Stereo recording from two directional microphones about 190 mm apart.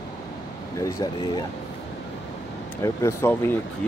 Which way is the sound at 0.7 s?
15° left (ahead or behind).